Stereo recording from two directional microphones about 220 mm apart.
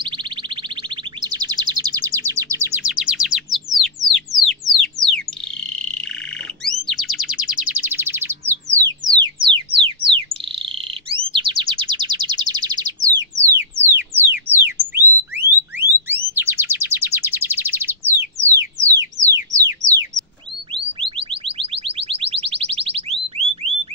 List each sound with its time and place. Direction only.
0.0 s music: 20° right (ahead or behind)
2.8 s music: 5° right (ahead or behind)
5.7 s frog: 5° left (ahead or behind)
6.6 s chirp: centre (ahead or behind)
9.1 s frog: 20° right (ahead or behind)
15.3 s music: 10° right (ahead or behind)
18.4 s a sound: 15° right (ahead or behind)
19.2 s music: 15° right (ahead or behind)
21.2 s music: 25° right (ahead or behind)